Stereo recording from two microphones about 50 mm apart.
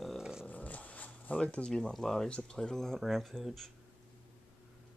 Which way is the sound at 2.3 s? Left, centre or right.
Left.